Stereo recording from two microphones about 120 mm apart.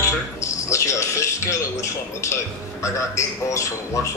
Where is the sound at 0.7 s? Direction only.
25° left (ahead or behind).